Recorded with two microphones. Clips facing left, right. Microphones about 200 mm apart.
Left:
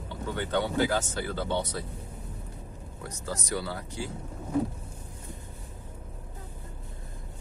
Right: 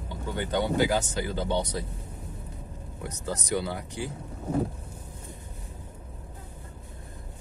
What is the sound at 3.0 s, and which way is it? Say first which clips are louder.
Speech: right 3 dB; 20° right (ahead or behind).